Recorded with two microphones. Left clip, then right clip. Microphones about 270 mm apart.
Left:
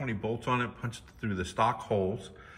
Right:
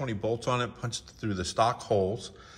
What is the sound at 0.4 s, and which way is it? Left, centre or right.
Speech, centre.